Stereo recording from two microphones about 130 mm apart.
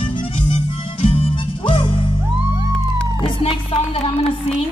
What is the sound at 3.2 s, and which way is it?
Music, 45° left (ahead or behind).